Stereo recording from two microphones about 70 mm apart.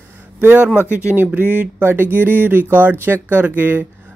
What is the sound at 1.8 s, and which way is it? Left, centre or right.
Speech, right.